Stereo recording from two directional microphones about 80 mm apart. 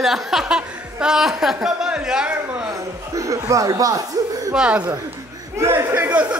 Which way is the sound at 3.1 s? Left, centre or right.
Right.